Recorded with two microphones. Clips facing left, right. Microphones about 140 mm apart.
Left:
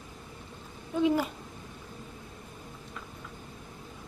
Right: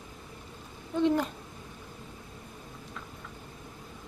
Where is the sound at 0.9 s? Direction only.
5° left (ahead or behind).